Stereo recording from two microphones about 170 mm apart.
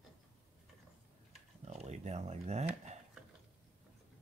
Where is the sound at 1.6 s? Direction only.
40° right (ahead or behind).